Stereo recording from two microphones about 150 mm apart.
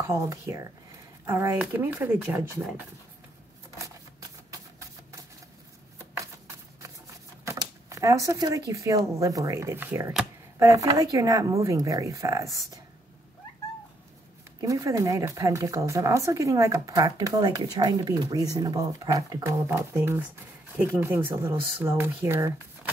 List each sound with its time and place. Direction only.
0.0 s speech: 20° right (ahead or behind)
7.4 s speech: 20° right (ahead or behind)
14.6 s speech: 20° right (ahead or behind)